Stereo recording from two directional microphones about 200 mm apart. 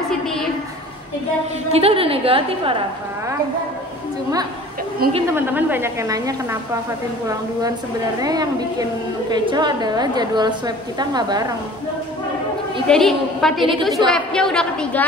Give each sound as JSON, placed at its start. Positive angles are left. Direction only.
{"t": 1.7, "sound": "a woman's voice", "side_deg": -30}
{"t": 5.3, "sound": "a woman's voice", "side_deg": -10}
{"t": 8.2, "sound": "a woman's voice", "side_deg": -20}
{"t": 12.8, "sound": "a woman's voice", "side_deg": 0}